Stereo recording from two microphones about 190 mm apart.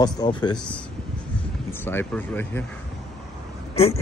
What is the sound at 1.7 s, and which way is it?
Speech, 10° left (ahead or behind).